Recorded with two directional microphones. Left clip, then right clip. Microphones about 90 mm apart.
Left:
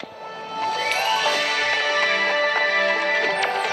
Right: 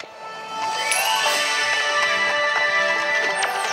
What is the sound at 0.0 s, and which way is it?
Music, 30° left (ahead or behind).